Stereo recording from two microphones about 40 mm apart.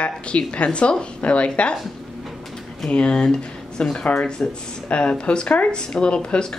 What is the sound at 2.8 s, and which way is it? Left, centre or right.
Speech, left.